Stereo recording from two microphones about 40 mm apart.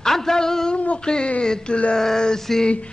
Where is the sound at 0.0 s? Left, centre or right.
Centre.